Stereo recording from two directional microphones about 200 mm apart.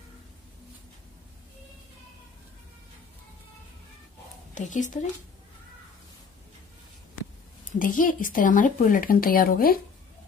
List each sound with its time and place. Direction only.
4.6 s speech: 40° left (ahead or behind)
7.8 s speech: 45° left (ahead or behind)